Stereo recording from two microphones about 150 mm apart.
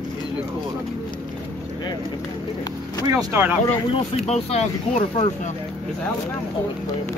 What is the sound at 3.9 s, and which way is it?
Speech, 45° left (ahead or behind).